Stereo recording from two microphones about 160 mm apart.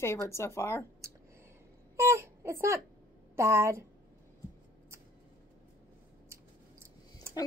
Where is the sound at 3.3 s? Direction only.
15° right (ahead or behind).